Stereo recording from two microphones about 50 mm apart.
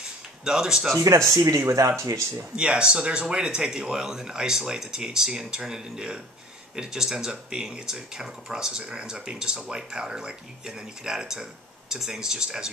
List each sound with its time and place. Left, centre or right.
0.5 s speech: centre
0.9 s speech: right
2.5 s speech: right